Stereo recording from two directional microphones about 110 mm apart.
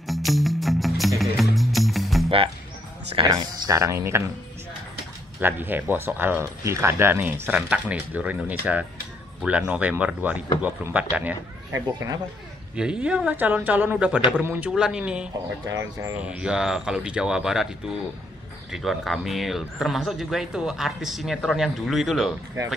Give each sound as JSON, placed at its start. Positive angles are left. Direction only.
{"t": 0.0, "sound": "music", "side_deg": 0}
{"t": 2.2, "sound": "music", "side_deg": -55}
{"t": 3.3, "sound": "speech", "side_deg": -35}
{"t": 5.4, "sound": "speech", "side_deg": -20}
{"t": 11.7, "sound": "speech", "side_deg": -25}
{"t": 13.0, "sound": "speech", "side_deg": -10}
{"t": 15.6, "sound": "speech", "side_deg": -25}
{"t": 16.2, "sound": "speech", "side_deg": -10}